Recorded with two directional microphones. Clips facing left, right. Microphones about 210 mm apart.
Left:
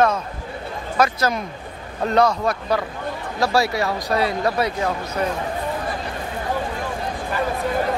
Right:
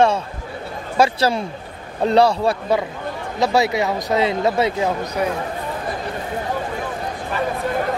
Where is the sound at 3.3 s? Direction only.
20° right (ahead or behind).